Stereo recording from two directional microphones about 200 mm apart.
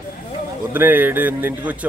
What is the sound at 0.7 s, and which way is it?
Speech, 10° right (ahead or behind).